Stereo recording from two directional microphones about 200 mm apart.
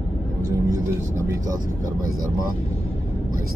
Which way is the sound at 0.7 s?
15° right (ahead or behind).